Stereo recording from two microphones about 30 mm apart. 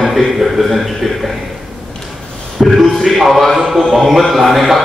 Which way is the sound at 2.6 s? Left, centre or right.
Centre.